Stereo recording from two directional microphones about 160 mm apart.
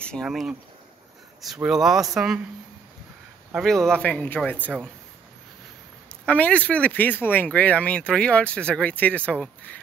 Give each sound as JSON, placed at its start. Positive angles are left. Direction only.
{"t": 0.0, "sound": "speech", "side_deg": 5}
{"t": 3.5, "sound": "speech", "side_deg": 0}
{"t": 6.2, "sound": "speech", "side_deg": 10}